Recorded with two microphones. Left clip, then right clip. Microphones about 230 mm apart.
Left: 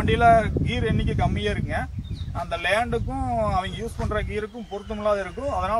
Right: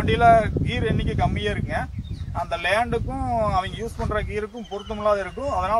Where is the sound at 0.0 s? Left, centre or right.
Centre.